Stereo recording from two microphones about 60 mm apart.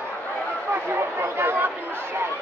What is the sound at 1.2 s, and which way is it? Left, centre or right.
Chatter, right.